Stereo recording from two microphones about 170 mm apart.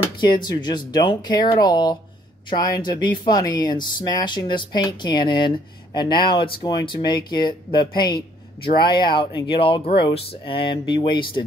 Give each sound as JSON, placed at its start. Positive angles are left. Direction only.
{"t": 0.2, "sound": "speech", "side_deg": 25}